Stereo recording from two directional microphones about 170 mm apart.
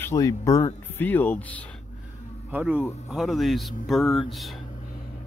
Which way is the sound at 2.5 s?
10° right (ahead or behind).